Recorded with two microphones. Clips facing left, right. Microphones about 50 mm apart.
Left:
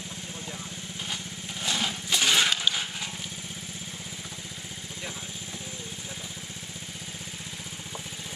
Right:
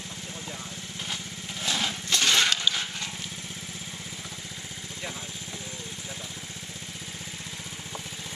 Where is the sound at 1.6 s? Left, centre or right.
Centre.